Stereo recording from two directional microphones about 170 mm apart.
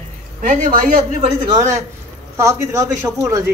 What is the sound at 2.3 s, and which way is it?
Speech, 15° right (ahead or behind).